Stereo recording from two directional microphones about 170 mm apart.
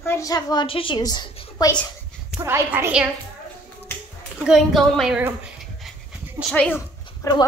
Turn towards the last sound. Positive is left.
turn(degrees=20)  # may be behind; listen again after turning